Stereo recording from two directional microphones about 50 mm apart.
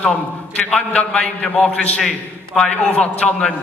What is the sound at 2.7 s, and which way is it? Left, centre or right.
Speech, left.